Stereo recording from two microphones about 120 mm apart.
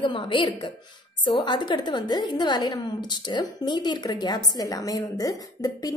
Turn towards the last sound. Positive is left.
turn(degrees=30)  # may be behind; listen again after turning